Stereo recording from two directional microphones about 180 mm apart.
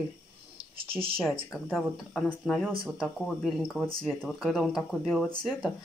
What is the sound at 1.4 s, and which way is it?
Speech, centre (ahead or behind).